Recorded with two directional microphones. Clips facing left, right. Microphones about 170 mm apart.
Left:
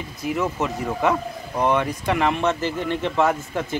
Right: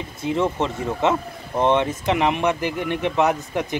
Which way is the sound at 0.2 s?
25° right (ahead or behind).